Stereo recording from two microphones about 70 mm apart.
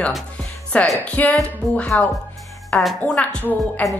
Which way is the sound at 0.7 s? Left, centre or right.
Centre.